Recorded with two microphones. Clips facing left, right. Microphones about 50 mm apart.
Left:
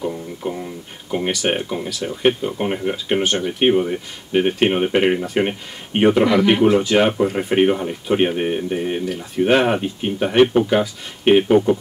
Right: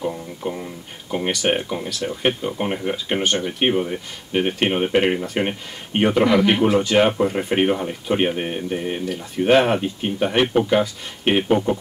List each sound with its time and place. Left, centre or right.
0.0 s speech: centre